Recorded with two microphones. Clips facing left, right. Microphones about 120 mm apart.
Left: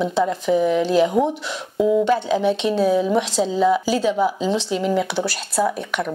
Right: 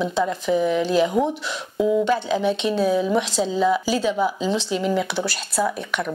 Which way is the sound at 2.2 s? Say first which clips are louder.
Left 2 dB; 50° left (ahead or behind).